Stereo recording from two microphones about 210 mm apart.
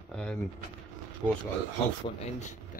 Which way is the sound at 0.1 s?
5° left (ahead or behind).